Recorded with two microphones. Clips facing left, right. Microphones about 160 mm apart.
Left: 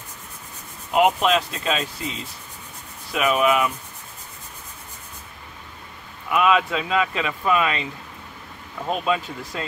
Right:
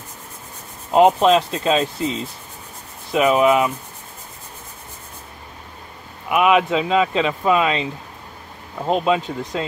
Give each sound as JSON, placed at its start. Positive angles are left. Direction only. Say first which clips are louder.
{"t": 0.9, "sound": "speech", "louder": "right 5 dB", "side_deg": -35}
{"t": 3.1, "sound": "speech", "louder": "right 5 dB", "side_deg": -25}
{"t": 6.2, "sound": "speech", "louder": "right 3 dB", "side_deg": -20}